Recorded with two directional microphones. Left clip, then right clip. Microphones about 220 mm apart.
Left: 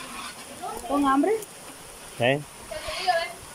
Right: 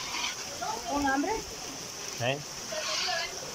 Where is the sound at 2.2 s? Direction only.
30° left (ahead or behind).